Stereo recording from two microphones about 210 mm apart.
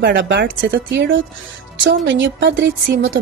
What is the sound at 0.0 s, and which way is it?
A woman's voice, 60° right (ahead or behind).